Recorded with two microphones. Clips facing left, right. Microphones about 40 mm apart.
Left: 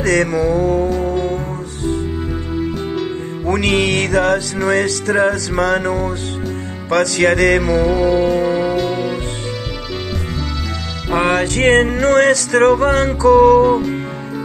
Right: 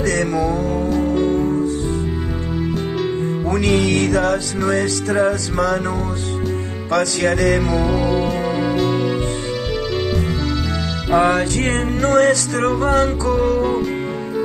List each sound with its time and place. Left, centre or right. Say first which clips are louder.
0.0 s music: left 3 dB; left
0.7 s music: left 1 dB; centre
3.4 s music: left 3 dB; left
7.0 s music: left 4 dB; left
7.6 s music: left 4 dB; centre
11.1 s music: even; left
11.5 s music: left 7 dB; left
13.6 s music: left 6 dB; centre